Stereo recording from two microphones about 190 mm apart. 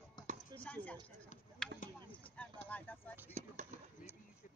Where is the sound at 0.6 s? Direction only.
10° left (ahead or behind).